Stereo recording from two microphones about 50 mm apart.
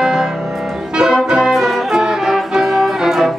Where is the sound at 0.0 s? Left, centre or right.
Centre.